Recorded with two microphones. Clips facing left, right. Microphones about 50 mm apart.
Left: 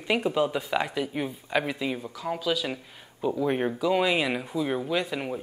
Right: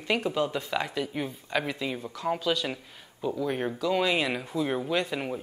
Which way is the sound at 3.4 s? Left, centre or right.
Centre.